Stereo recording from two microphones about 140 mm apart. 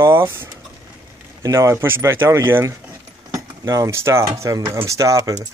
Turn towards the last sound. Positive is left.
turn(degrees=-25)  # may be behind; listen again after turning